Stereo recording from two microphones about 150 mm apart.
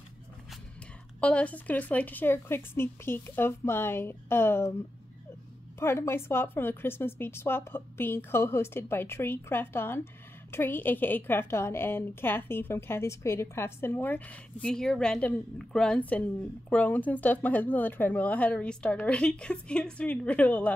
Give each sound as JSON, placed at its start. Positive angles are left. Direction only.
{"t": 1.2, "sound": "a woman's voice", "side_deg": 10}
{"t": 5.8, "sound": "a woman's voice", "side_deg": 15}